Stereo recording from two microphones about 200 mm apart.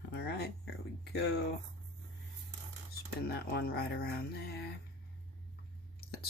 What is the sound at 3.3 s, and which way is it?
Speech, 50° left (ahead or behind).